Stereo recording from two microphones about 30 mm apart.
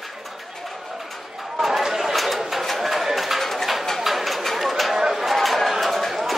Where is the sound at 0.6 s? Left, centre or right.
Centre.